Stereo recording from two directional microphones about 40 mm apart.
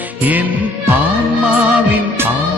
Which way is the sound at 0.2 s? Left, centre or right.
Right.